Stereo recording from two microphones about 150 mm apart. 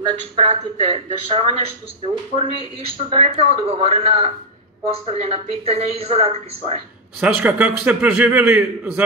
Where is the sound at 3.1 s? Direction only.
45° right (ahead or behind).